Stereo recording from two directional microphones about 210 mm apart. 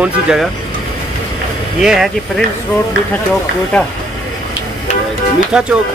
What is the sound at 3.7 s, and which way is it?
Speech, 5° left (ahead or behind).